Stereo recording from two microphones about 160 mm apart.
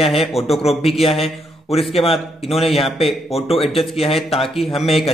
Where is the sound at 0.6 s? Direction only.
40° left (ahead or behind).